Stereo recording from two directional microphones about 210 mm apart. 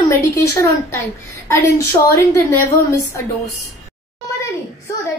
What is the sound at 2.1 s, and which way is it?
A woman's voice, 10° left (ahead or behind).